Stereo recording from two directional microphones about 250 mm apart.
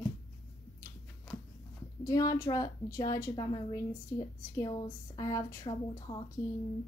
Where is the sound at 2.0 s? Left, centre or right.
Centre.